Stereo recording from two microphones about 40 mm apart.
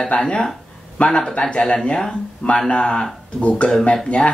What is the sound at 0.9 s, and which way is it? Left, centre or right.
Speech, left.